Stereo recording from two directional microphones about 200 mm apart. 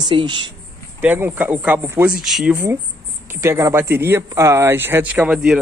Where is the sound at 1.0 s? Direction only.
10° right (ahead or behind).